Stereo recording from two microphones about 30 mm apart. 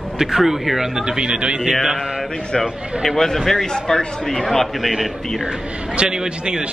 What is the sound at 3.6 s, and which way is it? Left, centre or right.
Speech, centre.